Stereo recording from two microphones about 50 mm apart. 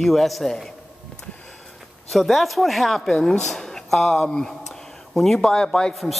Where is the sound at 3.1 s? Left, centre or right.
Centre.